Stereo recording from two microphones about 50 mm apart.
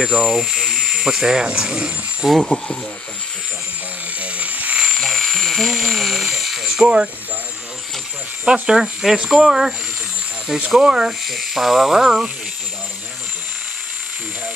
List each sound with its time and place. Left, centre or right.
0.0 s speech: centre
2.2 s speech: centre
4.2 s frog: right
4.8 s a sound: centre
8.6 s speech: centre
10.8 s speech: centre